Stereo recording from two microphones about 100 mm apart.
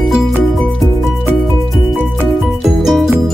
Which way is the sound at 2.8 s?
Centre (ahead or behind).